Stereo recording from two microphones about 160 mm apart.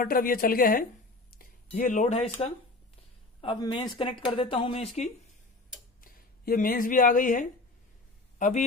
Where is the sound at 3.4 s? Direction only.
30° left (ahead or behind).